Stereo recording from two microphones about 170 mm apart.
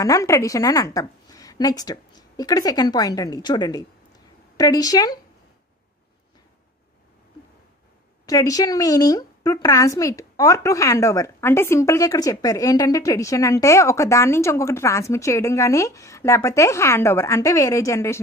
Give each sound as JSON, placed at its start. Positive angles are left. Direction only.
{"t": 0.0, "sound": "a woman's voice", "side_deg": 20}
{"t": 8.3, "sound": "speech", "side_deg": 20}